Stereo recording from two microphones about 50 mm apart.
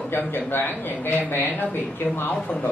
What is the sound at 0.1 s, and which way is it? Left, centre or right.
A man's voice, left.